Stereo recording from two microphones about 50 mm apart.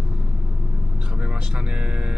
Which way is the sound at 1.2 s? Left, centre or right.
Centre.